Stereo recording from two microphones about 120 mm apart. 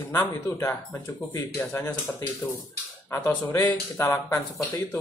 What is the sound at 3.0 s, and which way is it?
Speech, 20° left (ahead or behind).